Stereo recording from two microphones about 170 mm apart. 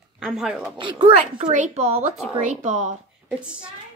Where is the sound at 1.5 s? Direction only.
40° right (ahead or behind).